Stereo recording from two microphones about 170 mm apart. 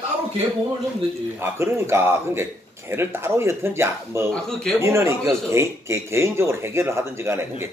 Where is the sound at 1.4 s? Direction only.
15° right (ahead or behind).